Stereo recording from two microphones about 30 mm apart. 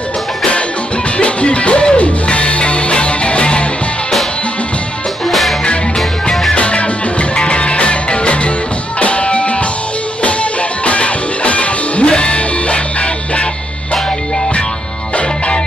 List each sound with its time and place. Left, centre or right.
1.1 s music: left
6.5 s music: left
10.9 s music: left